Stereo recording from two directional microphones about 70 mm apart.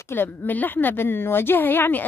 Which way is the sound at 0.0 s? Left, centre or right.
Left.